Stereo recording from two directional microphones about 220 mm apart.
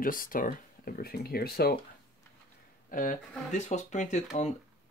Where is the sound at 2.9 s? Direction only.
35° left (ahead or behind).